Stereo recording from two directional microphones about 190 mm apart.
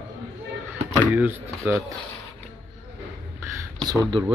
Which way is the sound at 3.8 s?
20° right (ahead or behind).